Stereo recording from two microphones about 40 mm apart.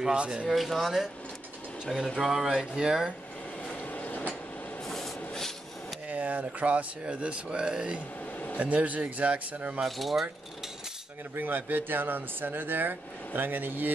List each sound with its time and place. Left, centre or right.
0.0 s speech: right
0.5 s speech: centre
2.1 s speech: centre
3.9 s train: left
4.8 s a sound: centre
6.0 s speech: right
8.5 s speech: right
9.8 s speech: centre
11.3 s speech: right